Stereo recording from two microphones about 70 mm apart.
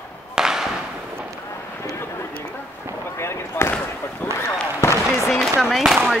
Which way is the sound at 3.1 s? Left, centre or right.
Left.